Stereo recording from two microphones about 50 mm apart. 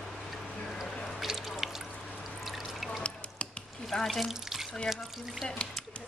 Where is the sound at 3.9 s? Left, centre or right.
Centre.